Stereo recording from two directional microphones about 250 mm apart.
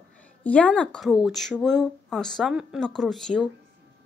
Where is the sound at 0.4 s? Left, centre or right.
Centre.